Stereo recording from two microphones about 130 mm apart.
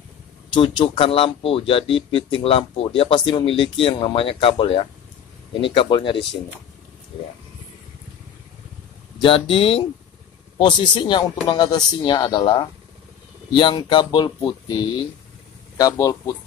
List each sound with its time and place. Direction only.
0.5 s speech: 40° left (ahead or behind)
9.2 s speech: 45° left (ahead or behind)
15.8 s a man's voice: 25° left (ahead or behind)